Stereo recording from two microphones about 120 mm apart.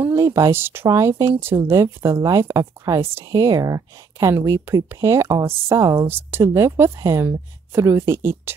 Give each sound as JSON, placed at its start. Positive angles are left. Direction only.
{"t": 0.1, "sound": "speech", "side_deg": -25}